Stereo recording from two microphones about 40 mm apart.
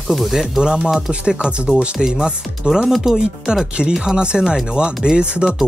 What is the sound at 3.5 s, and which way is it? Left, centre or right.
Speech, right.